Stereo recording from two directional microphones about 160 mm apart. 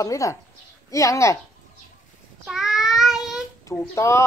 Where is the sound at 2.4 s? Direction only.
Centre (ahead or behind).